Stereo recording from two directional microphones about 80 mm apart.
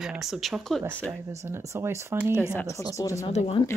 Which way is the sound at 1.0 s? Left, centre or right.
Right.